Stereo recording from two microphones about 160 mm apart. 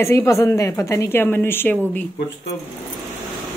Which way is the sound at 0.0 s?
20° left (ahead or behind).